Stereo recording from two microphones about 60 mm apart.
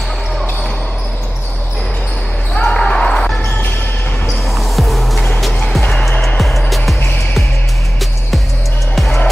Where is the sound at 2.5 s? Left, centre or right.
Centre.